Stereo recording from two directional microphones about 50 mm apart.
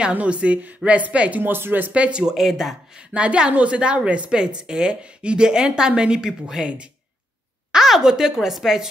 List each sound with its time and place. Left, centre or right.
0.1 s a woman's voice: right
1.4 s speech: right
1.9 s a woman's voice: right
2.3 s speech: centre
3.0 s a woman's voice: right; by 8.8 s centre